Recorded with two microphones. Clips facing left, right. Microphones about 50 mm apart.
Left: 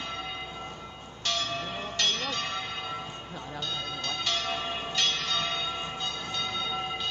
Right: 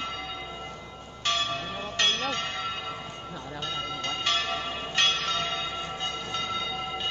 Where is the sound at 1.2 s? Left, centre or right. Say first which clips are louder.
Right 3 dB; right.